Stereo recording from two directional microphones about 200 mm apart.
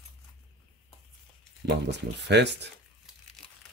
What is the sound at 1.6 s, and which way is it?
Speech, 60° right (ahead or behind).